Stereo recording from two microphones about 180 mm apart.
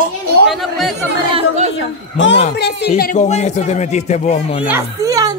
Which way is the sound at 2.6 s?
70° left (ahead or behind).